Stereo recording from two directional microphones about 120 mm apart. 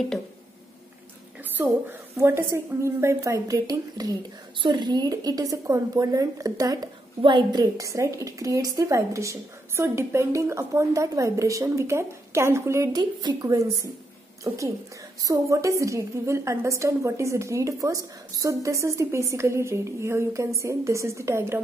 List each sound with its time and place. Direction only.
1.6 s a woman's voice: 20° right (ahead or behind)
7.2 s a woman's voice: 40° right (ahead or behind); by 12.9 s 25° right (ahead or behind)
12.9 s a woman's voice: 35° right (ahead or behind)
15.2 s a woman's voice: 25° right (ahead or behind)